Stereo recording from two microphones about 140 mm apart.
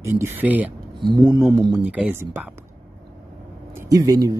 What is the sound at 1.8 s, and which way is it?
Speech, 10° right (ahead or behind).